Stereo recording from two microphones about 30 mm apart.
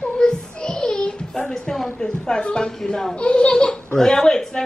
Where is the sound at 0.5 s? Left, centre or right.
Left.